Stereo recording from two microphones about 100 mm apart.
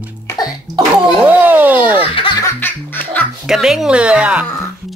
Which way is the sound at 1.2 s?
15° right (ahead or behind).